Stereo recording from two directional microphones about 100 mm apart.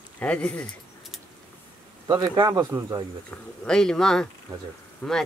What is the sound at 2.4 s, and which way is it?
Speech, 35° right (ahead or behind).